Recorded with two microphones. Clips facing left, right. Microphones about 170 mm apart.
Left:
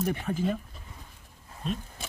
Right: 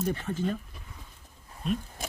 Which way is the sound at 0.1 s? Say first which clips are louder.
Left 1 dB; 10° left (ahead or behind).